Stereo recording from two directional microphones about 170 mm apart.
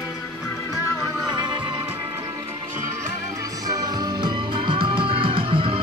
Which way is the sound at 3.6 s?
20° right (ahead or behind).